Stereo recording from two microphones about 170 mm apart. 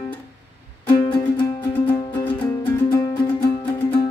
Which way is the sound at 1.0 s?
30° left (ahead or behind).